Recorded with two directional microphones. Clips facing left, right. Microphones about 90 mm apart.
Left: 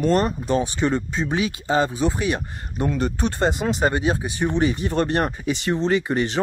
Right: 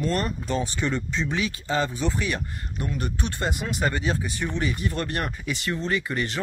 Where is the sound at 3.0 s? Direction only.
35° left (ahead or behind).